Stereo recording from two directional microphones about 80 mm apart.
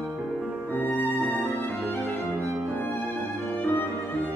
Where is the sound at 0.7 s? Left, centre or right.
Left.